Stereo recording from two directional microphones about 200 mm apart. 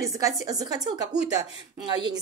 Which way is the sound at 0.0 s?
15° right (ahead or behind).